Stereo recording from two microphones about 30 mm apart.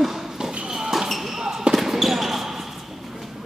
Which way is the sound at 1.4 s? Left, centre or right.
Centre.